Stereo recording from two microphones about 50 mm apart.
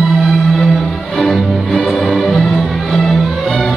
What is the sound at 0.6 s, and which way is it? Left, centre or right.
Music, centre.